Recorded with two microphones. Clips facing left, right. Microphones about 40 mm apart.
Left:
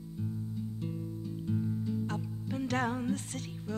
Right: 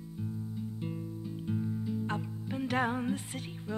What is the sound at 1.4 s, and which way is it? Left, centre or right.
Music, centre.